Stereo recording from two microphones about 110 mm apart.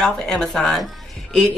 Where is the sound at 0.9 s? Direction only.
Centre (ahead or behind).